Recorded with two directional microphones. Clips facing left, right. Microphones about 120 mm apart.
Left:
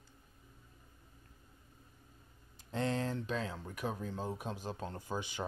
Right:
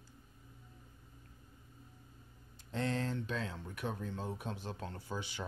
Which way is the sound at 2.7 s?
15° left (ahead or behind).